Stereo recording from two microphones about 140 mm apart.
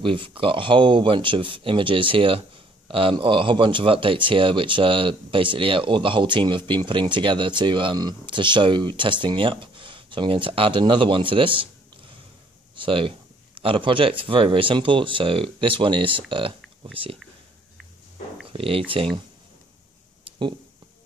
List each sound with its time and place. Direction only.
0.0 s speech: 35° right (ahead or behind)
12.7 s speech: 40° right (ahead or behind)
18.5 s speech: 40° right (ahead or behind)
20.2 s a sound: 35° right (ahead or behind)